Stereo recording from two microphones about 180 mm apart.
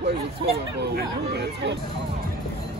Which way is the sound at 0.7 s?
65° right (ahead or behind).